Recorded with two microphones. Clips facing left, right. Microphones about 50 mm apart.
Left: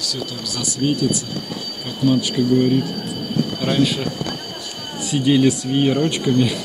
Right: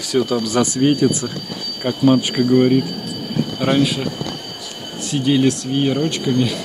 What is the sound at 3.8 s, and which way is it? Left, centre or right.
Speech, centre.